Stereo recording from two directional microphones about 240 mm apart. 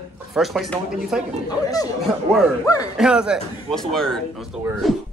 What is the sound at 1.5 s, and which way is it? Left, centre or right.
Speech, centre.